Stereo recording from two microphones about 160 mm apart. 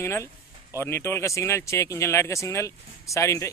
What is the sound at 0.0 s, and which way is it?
Speech, 15° left (ahead or behind).